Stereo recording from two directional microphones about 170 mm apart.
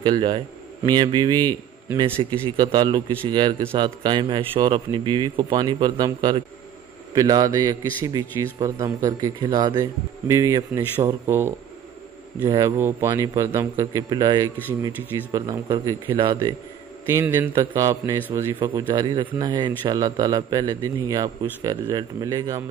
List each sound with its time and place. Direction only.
0.0 s a man's voice: 25° right (ahead or behind)
1.9 s a man's voice: 15° right (ahead or behind)
2.1 s a man's voice: 25° right (ahead or behind)